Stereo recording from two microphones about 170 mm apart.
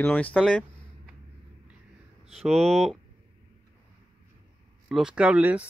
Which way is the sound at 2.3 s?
Centre (ahead or behind).